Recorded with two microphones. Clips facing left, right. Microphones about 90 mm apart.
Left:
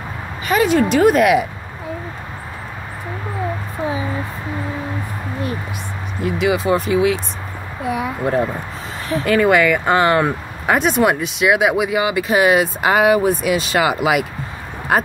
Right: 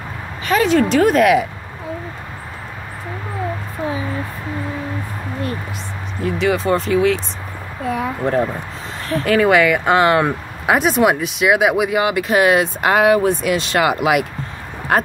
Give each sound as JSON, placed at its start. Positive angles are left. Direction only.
{"t": 0.5, "sound": "speech", "side_deg": 10}
{"t": 6.2, "sound": "speech", "side_deg": 10}